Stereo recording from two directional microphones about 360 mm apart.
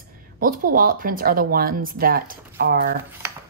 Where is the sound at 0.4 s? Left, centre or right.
Right.